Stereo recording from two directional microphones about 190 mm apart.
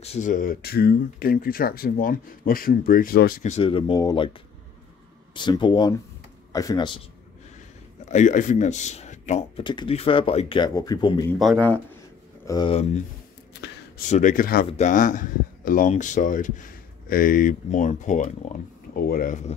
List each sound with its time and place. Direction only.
0.0 s speech: 35° left (ahead or behind); by 6.9 s 20° left (ahead or behind)
8.1 s speech: 40° left (ahead or behind)
9.6 s speech: 25° left (ahead or behind)
11.3 s speech: centre (ahead or behind)
12.4 s speech: 20° left (ahead or behind)
14.0 s speech: 40° left (ahead or behind)